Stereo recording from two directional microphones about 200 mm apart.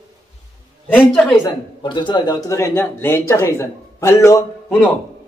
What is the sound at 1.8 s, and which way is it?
A man's voice, 25° left (ahead or behind).